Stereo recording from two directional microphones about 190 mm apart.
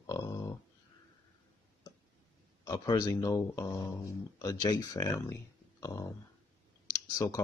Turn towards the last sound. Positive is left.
turn(degrees=20)  # may be behind; listen again after turning